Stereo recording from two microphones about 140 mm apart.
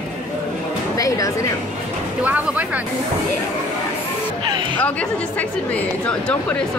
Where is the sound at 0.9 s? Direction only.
25° left (ahead or behind).